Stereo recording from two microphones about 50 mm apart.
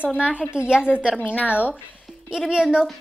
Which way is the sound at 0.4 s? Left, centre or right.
Centre.